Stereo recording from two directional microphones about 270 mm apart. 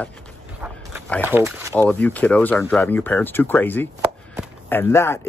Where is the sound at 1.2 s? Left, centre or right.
Centre.